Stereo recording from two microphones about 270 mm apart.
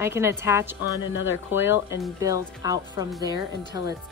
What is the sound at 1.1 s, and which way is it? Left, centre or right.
Speech, left.